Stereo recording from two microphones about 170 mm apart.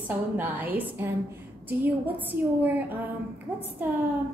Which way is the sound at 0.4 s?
10° right (ahead or behind).